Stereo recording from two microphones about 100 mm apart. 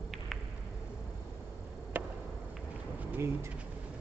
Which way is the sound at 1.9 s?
20° right (ahead or behind).